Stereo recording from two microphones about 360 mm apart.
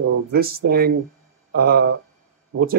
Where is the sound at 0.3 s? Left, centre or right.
Right.